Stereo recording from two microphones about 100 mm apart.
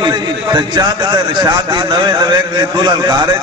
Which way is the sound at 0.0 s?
45° right (ahead or behind).